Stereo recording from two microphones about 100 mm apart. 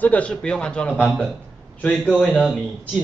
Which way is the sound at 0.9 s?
10° right (ahead or behind).